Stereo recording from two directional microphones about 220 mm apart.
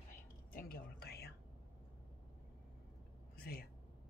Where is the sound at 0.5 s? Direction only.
45° left (ahead or behind).